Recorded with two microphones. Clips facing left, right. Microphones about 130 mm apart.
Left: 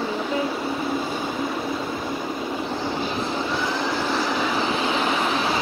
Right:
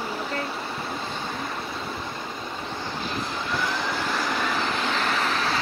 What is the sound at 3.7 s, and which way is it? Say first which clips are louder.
Vehicle: left 4 dB; 5° left (ahead or behind).